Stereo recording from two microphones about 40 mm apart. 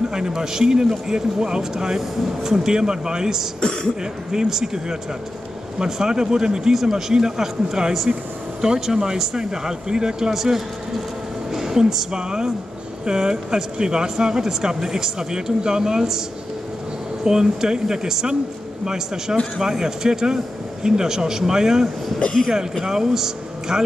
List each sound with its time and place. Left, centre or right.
0.3 s speech: centre
3.6 s speech: left
4.0 s a woman's voice: centre
17.2 s speech: centre
22.8 s speech: centre